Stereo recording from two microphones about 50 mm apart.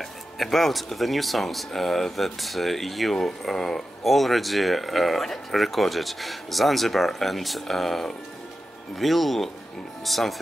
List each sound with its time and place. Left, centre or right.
0.0 s speech: centre